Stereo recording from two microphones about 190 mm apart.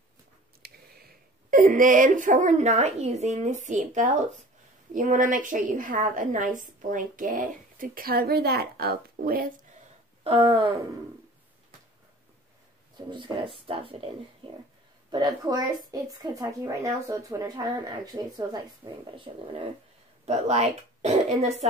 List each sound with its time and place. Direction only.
0.6 s a woman's voice: 50° right (ahead or behind)
10.2 s a woman's voice: 25° right (ahead or behind)
12.9 s a woman's voice: 25° right (ahead or behind)